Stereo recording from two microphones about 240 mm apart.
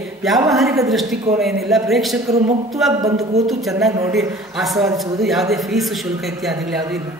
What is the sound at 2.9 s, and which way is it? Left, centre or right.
Mantra, centre.